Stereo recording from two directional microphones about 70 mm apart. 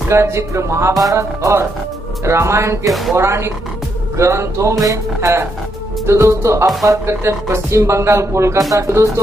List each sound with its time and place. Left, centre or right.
0.1 s speech: right
2.9 s speech: centre
3.2 s speech: right